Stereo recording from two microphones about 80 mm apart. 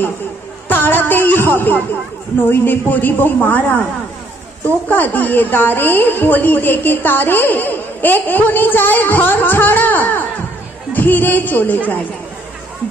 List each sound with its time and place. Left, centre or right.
0.7 s speech: left
4.8 s speech: left